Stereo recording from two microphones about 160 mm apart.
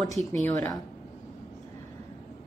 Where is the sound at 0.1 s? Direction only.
Centre (ahead or behind).